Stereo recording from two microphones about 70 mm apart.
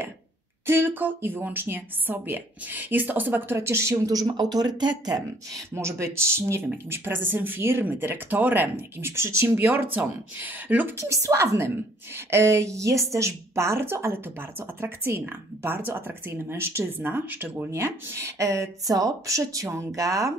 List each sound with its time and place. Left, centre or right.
0.7 s a woman's voice: right
3.5 s a woman's voice: right
4.1 s speech: right
5.8 s a woman's voice: right
6.9 s a woman's voice: right
9.7 s a woman's voice: right
11.0 s a woman's voice: right
17.6 s speech: right